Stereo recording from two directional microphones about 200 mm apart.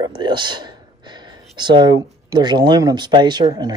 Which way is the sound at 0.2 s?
25° right (ahead or behind).